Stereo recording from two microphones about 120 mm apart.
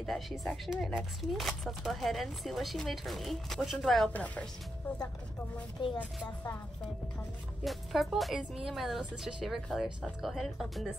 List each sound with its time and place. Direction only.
0.0 s speech: centre (ahead or behind)
5.8 s a woman's voice: 40° left (ahead or behind)
7.6 s speech: centre (ahead or behind)